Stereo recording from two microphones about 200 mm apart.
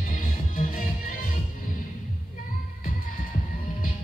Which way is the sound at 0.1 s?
45° left (ahead or behind).